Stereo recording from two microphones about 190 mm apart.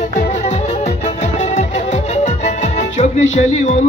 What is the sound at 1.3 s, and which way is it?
Music, 35° left (ahead or behind).